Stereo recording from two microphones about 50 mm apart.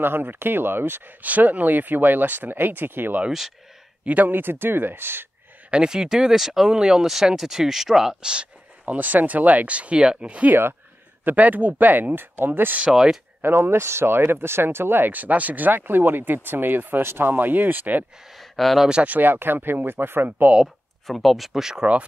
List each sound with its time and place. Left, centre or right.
0.0 s speech: right
1.2 s speech: right
3.3 s speech: centre
4.0 s speech: right
5.7 s speech: centre
8.8 s speech: right
11.2 s speech: right
12.9 s speech: centre
13.4 s speech: right
15.0 s speech: right
18.3 s speech: centre
19.0 s speech: right
20.6 s speech: centre